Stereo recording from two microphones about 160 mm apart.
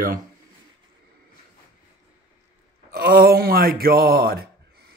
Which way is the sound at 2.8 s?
70° right (ahead or behind).